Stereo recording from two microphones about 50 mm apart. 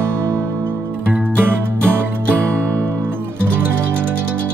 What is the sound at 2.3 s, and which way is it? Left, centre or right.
Music, right.